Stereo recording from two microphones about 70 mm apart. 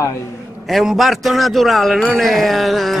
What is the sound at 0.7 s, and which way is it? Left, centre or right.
A man's voice, centre.